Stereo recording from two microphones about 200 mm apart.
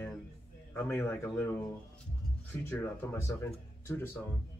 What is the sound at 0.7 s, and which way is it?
Speech, 10° left (ahead or behind).